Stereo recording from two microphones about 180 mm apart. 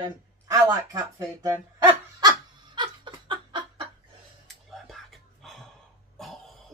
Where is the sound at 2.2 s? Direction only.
25° right (ahead or behind).